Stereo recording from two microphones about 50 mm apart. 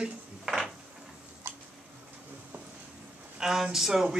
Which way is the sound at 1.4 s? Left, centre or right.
Right.